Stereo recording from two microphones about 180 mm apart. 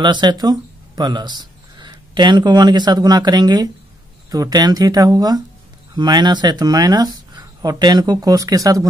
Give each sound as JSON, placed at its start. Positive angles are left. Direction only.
{"t": 0.0, "sound": "speech", "side_deg": -25}